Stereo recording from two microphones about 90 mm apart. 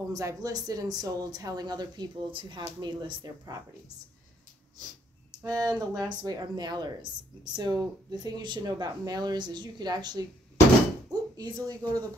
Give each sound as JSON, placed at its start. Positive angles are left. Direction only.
{"t": 0.1, "sound": "speech", "side_deg": -40}
{"t": 5.4, "sound": "a woman's voice", "side_deg": -40}